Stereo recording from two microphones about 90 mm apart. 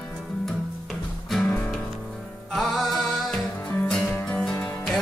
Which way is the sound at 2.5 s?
Centre (ahead or behind).